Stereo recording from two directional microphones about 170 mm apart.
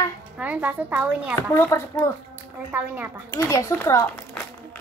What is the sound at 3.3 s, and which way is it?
Speech, 20° left (ahead or behind).